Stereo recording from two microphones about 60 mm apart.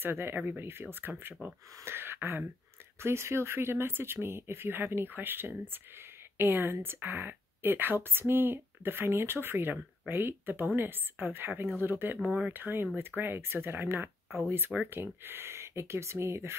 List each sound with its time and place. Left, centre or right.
0.0 s speech: right
3.0 s speech: right